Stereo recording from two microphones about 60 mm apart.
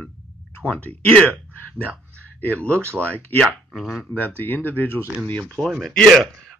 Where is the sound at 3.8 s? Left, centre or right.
Centre.